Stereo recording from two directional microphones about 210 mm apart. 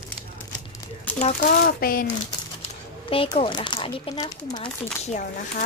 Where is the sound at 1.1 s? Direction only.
5° left (ahead or behind).